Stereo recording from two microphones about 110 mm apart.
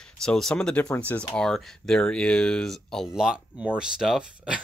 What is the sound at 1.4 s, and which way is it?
Speech, 5° left (ahead or behind).